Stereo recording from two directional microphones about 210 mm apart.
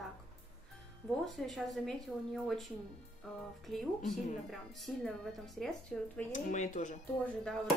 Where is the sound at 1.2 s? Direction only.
Centre (ahead or behind).